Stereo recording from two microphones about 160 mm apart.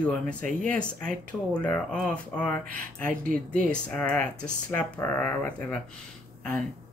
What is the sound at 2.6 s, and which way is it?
Speech, 60° right (ahead or behind).